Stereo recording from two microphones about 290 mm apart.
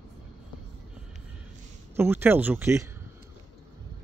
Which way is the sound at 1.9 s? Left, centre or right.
Centre.